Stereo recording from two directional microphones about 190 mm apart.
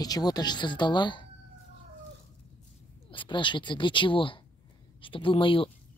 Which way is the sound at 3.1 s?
25° left (ahead or behind).